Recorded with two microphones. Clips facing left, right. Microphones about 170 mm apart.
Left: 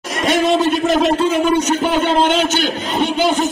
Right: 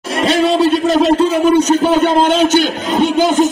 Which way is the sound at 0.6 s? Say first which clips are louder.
Right 3 dB; 35° right (ahead or behind).